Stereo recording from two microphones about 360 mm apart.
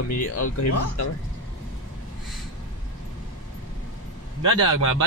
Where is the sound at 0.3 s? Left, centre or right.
Left.